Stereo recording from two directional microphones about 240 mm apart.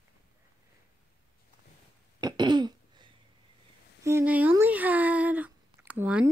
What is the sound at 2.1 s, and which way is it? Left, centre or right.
Throat clearing, centre.